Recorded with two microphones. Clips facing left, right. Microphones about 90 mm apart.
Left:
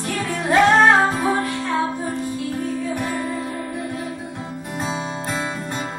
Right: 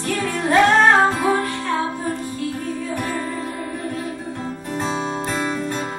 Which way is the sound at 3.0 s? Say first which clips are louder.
Even; 15° left (ahead or behind).